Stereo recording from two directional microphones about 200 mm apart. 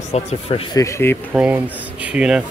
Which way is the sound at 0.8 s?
15° left (ahead or behind).